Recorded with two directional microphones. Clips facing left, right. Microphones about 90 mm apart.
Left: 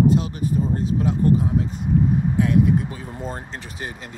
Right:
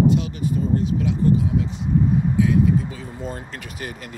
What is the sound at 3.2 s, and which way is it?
Speech, 35° left (ahead or behind).